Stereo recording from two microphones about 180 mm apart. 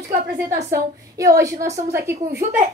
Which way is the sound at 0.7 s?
15° right (ahead or behind).